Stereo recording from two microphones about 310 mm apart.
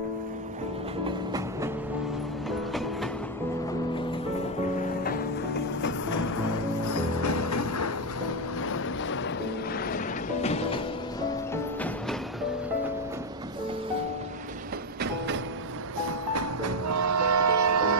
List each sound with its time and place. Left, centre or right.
1.0 s music: centre
5.0 s music: left
6.9 s music: left
8.6 s boat: left
9.8 s music: left
11.5 s music: centre
16.3 s train: right